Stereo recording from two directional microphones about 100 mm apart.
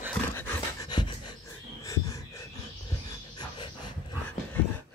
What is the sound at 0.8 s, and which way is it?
Pant, 50° left (ahead or behind).